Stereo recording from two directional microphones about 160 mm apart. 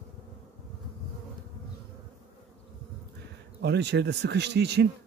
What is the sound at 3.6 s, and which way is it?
Speech, 90° right.